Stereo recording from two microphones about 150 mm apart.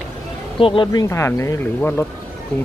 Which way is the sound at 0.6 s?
35° left (ahead or behind).